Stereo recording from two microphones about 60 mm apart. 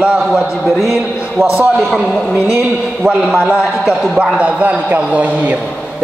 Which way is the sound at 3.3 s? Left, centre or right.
Centre.